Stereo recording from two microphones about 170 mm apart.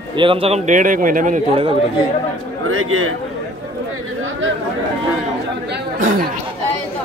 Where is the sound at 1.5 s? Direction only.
35° right (ahead or behind).